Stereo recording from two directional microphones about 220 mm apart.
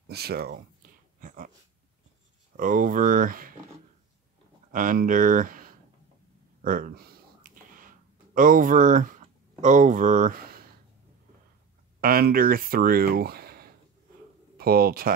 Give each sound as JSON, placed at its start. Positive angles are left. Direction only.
{"t": 0.1, "sound": "speech", "side_deg": -45}
{"t": 1.2, "sound": "dog", "side_deg": -40}
{"t": 2.5, "sound": "speech", "side_deg": -40}
{"t": 4.7, "sound": "speech", "side_deg": -40}
{"t": 6.6, "sound": "a sound", "side_deg": -40}
{"t": 8.4, "sound": "speech", "side_deg": -40}
{"t": 12.0, "sound": "speech", "side_deg": -45}